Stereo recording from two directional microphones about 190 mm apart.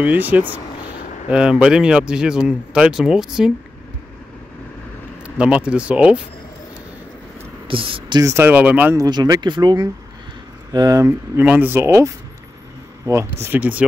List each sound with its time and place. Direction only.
0.0 s speech: 10° right (ahead or behind)
5.2 s speech: 5° right (ahead or behind)
7.6 s speech: 30° right (ahead or behind); by 9.0 s 10° right (ahead or behind)
9.0 s speech: 20° right (ahead or behind)